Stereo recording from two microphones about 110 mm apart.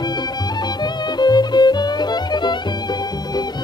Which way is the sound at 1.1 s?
40° left (ahead or behind).